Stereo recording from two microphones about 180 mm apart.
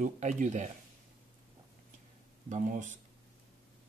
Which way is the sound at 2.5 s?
45° right (ahead or behind).